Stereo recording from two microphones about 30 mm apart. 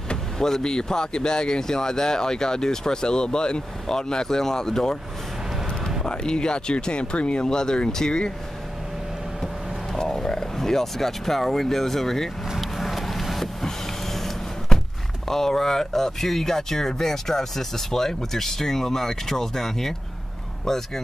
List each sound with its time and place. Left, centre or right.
0.4 s speech: left
6.0 s speech: left
7.4 s speech: left
9.9 s speech: centre
12.5 s a sound: centre
13.4 s vehicle: centre
14.7 s a sound: left
15.2 s speech: centre